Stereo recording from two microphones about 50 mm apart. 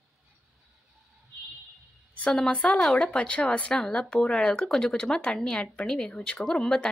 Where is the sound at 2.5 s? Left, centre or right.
Left.